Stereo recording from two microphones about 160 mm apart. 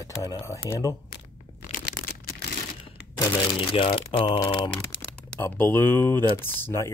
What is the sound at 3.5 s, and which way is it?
Speech, 35° left (ahead or behind).